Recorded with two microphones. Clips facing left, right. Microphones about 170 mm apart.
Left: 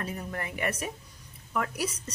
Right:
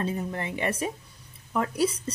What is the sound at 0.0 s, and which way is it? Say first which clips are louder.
A woman's voice: right 5 dB; 25° right (ahead or behind).